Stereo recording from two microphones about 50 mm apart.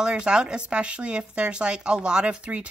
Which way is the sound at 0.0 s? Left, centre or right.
Centre.